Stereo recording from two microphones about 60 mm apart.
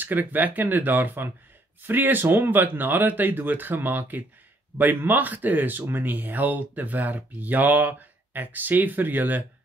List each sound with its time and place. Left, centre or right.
0.0 s speech: right